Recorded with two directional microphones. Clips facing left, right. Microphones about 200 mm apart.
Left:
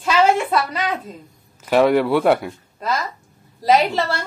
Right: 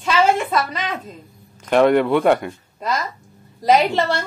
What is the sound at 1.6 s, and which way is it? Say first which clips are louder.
Speech: right 1 dB; 5° left (ahead or behind).